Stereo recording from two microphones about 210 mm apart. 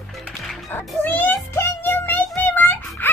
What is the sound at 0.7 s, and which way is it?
Music, 10° left (ahead or behind).